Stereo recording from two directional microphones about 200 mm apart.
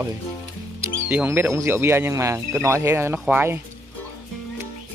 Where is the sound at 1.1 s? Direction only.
10° right (ahead or behind).